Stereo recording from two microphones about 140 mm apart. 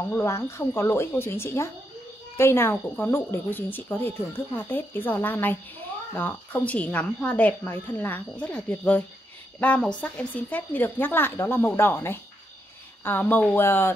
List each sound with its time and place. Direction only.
0.1 s a woman's voice: 20° left (ahead or behind)